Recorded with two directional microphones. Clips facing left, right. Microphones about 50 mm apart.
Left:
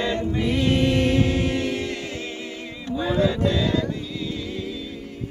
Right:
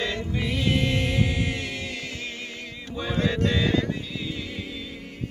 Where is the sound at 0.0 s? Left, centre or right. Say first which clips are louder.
Left 5 dB; centre.